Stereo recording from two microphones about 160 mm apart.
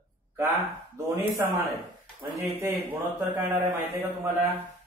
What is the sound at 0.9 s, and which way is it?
Speech, 20° right (ahead or behind).